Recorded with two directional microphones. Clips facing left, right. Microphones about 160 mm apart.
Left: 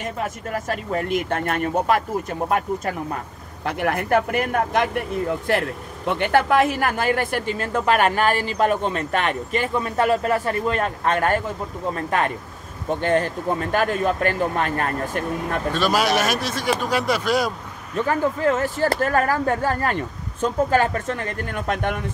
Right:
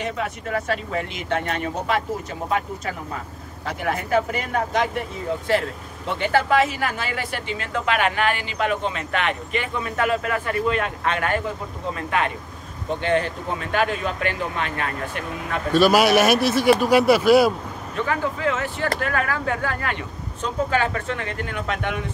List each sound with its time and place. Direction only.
0.2 s speech: 45° left (ahead or behind)
3.6 s speech: 60° left (ahead or behind)
6.1 s speech: 55° left (ahead or behind)
15.7 s speech: 10° right (ahead or behind)
17.9 s speech: 40° left (ahead or behind)